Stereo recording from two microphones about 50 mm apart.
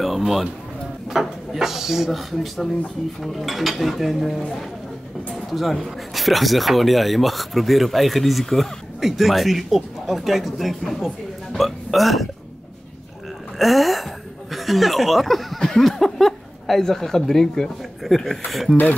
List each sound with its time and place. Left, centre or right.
1.0 s speech: centre
13.6 s speech: centre